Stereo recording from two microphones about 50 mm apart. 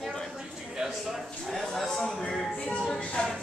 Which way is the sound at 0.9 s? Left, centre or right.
Centre.